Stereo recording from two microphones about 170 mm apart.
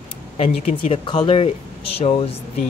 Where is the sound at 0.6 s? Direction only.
35° left (ahead or behind).